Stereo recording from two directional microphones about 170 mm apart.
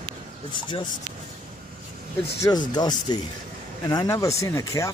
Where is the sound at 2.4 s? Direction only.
25° left (ahead or behind).